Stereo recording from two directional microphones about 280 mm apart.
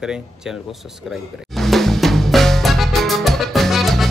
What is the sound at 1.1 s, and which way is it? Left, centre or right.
Music, centre.